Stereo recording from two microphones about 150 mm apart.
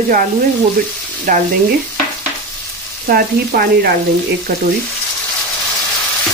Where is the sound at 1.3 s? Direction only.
65° right (ahead or behind).